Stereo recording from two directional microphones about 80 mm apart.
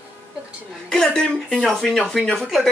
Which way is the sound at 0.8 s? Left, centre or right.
Centre.